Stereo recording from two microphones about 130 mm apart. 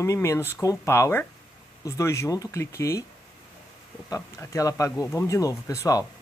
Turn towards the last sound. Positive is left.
turn(degrees=25)  # may be behind; listen again after turning